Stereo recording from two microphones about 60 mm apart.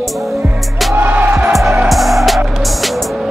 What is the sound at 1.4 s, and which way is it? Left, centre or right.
Music, centre.